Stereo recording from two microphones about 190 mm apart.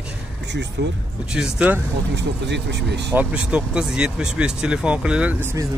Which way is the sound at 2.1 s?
65° right (ahead or behind).